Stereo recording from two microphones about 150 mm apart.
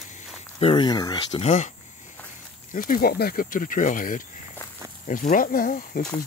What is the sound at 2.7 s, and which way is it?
Speech, 65° left (ahead or behind).